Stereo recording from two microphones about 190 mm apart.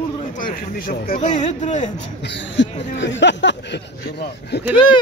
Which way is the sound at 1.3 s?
40° left (ahead or behind).